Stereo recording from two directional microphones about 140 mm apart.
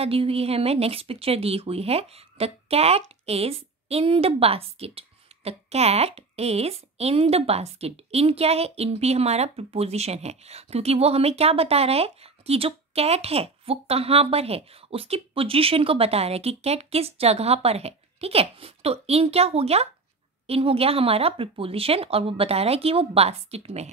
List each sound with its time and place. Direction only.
0.0 s speech: 45° right (ahead or behind)